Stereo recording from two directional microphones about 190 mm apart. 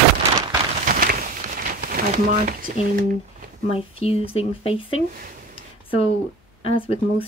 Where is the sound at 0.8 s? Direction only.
45° right (ahead or behind).